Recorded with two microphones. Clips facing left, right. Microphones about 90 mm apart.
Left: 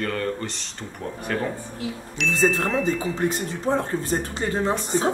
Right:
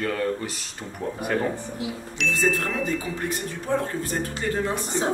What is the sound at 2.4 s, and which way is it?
Speech, 20° left (ahead or behind).